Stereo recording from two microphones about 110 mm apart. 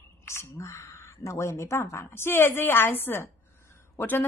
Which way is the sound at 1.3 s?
25° left (ahead or behind).